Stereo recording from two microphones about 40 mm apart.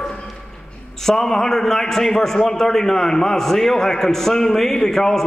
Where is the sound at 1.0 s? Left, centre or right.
Centre.